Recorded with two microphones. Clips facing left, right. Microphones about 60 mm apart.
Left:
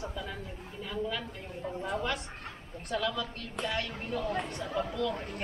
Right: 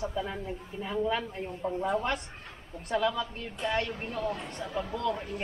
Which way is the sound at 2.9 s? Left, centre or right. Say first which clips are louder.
Right 4 dB; right.